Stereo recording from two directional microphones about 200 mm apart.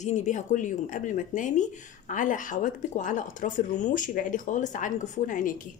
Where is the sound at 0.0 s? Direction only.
35° left (ahead or behind).